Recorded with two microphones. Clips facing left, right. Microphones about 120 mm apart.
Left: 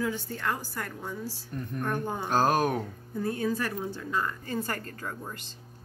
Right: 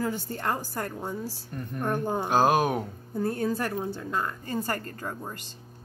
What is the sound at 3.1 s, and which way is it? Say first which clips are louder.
Speech: right 2 dB; 35° right (ahead or behind).